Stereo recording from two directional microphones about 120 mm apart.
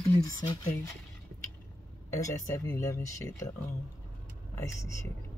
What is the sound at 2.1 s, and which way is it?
Speech, 25° left (ahead or behind).